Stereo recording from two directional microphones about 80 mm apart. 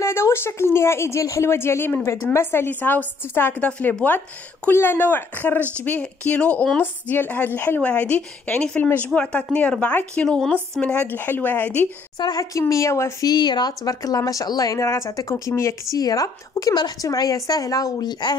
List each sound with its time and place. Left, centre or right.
0.0 s a woman's voice: left; by 6.8 s centre
6.8 s a woman's voice: left
12.2 s speech: left
12.5 s a woman's voice: left
13.2 s speech: left
13.8 s a woman's voice: left
16.0 s a woman's voice: left